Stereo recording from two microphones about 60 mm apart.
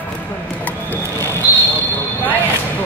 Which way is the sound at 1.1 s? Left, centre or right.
Right.